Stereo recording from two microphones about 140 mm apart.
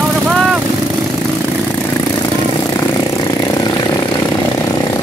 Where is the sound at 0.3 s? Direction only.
Centre (ahead or behind).